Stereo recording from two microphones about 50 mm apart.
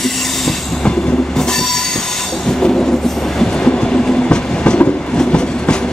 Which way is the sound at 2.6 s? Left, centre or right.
Centre.